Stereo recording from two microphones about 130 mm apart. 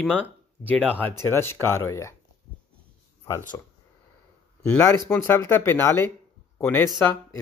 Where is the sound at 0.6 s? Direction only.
10° left (ahead or behind).